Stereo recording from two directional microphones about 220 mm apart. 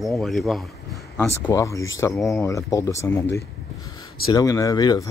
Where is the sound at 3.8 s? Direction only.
15° left (ahead or behind).